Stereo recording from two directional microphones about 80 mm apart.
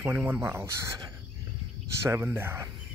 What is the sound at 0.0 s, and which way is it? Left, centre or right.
Speech, right.